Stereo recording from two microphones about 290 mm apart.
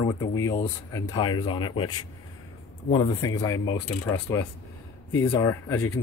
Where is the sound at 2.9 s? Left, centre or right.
Centre.